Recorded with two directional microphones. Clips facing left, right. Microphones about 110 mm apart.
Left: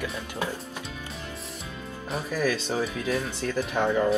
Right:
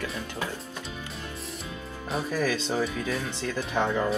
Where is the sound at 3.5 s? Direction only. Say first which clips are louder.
Left 2 dB; 10° left (ahead or behind).